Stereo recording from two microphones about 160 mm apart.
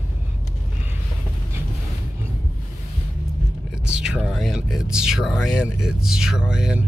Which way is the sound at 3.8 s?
5° right (ahead or behind).